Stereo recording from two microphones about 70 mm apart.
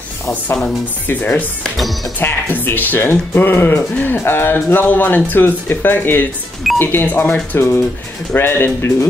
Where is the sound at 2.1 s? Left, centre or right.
Left.